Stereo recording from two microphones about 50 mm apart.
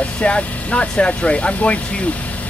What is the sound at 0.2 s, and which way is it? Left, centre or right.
Speech, left.